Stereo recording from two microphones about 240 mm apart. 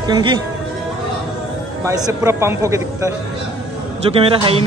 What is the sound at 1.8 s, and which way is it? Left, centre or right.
A man's voice, centre.